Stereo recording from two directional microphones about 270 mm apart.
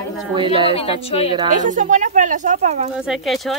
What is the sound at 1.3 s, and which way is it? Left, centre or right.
Speech, right.